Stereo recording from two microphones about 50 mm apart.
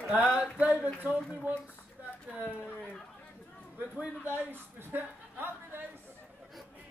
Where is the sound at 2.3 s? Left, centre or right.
Right.